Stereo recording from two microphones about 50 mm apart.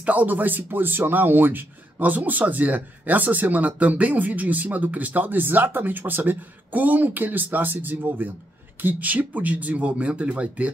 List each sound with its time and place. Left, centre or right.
0.0 s speech: right